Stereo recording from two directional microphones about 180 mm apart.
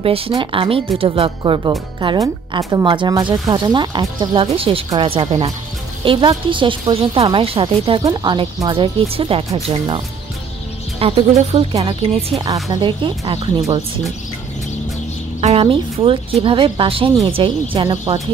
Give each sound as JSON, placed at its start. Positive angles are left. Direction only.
{"t": 0.0, "sound": "speech", "side_deg": -30}
{"t": 15.4, "sound": "speech", "side_deg": -30}